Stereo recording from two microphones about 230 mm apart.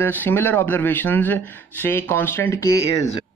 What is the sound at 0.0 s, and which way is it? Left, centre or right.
Speech, centre.